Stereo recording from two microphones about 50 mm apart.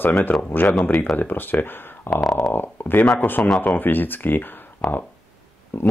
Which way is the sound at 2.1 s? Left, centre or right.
Left.